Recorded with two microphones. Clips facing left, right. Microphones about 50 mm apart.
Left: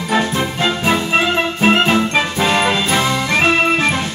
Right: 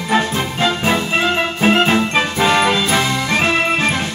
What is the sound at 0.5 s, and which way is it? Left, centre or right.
Music, right.